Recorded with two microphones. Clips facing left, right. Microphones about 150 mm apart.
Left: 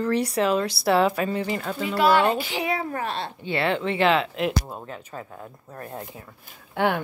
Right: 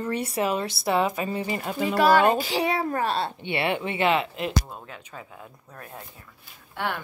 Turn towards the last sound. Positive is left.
turn(degrees=55)  # may be behind; listen again after turning